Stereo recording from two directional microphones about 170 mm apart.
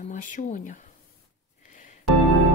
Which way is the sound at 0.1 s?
50° left (ahead or behind).